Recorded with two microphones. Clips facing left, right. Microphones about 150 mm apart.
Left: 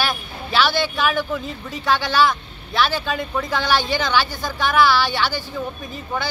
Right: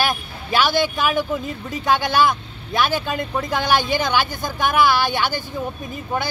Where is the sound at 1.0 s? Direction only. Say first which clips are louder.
Right 1 dB; 10° right (ahead or behind).